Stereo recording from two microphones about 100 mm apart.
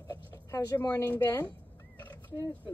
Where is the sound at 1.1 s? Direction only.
20° left (ahead or behind).